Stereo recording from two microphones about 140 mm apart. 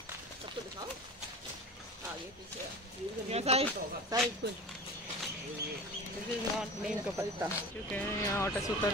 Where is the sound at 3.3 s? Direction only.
50° right (ahead or behind).